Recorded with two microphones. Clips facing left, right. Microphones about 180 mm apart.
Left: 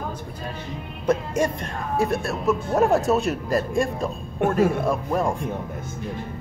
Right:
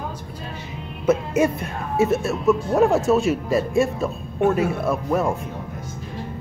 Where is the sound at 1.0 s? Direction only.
5° right (ahead or behind).